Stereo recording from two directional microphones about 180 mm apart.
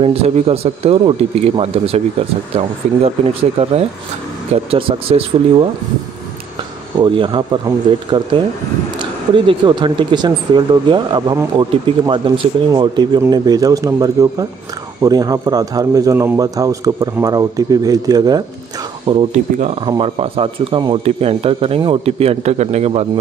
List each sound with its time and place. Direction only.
0.0 s speech: 35° right (ahead or behind)
7.0 s speech: 25° right (ahead or behind)
19.3 s speech: 45° right (ahead or behind)
19.8 s speech: 25° right (ahead or behind)